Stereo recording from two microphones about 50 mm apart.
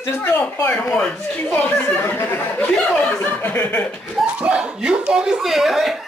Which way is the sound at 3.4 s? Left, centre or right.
Left.